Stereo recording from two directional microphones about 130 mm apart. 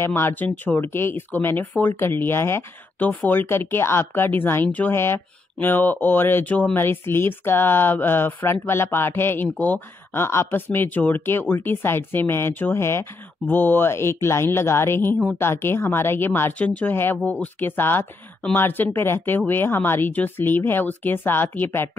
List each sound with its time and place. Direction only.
0.0 s speech: 20° left (ahead or behind)